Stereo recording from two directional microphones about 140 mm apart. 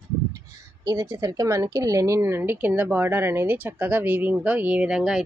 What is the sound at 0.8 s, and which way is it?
A woman's voice, 25° right (ahead or behind).